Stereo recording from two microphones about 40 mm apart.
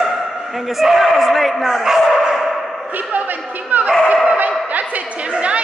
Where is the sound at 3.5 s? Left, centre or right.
Right.